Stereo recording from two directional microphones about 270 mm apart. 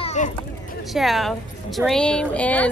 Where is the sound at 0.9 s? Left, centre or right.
Centre.